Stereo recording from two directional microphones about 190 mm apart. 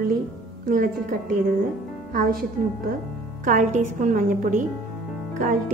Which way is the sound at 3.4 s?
40° right (ahead or behind).